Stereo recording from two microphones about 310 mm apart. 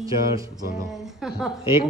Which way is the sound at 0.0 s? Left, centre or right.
Centre.